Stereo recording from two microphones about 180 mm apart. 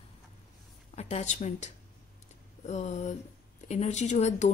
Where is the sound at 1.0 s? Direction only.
40° left (ahead or behind).